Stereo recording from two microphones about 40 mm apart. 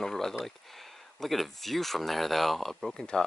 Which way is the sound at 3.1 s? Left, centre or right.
Centre.